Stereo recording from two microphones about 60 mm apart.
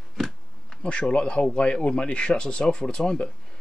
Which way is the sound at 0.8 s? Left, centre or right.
Centre.